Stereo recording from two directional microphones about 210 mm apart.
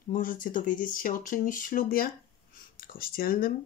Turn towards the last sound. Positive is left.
turn(degrees=45)  # may be behind; listen again after turning